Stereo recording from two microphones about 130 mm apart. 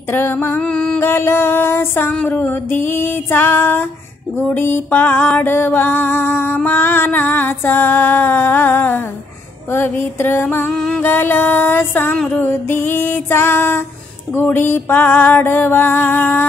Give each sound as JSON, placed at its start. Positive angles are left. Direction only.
{"t": 0.1, "sound": "music", "side_deg": 15}